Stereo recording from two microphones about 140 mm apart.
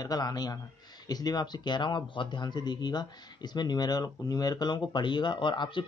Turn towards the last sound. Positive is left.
turn(degrees=35)  # may be behind; listen again after turning